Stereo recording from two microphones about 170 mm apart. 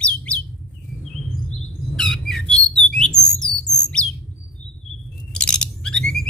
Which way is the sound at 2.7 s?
5° left (ahead or behind).